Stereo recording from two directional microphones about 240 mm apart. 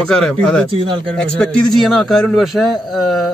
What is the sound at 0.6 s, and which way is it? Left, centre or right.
Speech, right.